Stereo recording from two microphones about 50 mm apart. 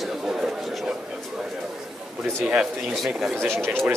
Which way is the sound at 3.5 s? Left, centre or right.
Centre.